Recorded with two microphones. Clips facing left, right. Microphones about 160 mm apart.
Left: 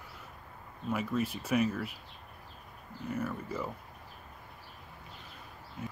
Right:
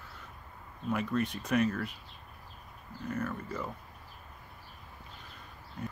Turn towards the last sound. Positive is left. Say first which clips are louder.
# right 1 dB
turn(degrees=5)  # may be behind; listen again after turning